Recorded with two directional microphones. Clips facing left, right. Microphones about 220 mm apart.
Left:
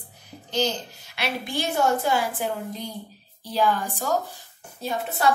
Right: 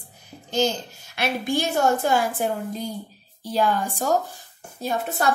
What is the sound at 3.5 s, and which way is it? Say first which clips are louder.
Speech: right 1 dB; 45° right (ahead or behind).